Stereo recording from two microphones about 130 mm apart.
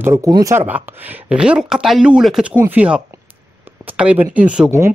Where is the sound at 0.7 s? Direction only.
15° right (ahead or behind).